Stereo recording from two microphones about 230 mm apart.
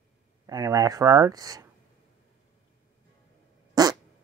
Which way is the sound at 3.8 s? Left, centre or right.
Centre.